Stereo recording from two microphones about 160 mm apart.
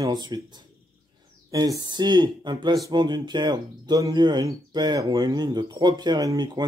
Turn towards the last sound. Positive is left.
turn(degrees=-25)  # may be behind; listen again after turning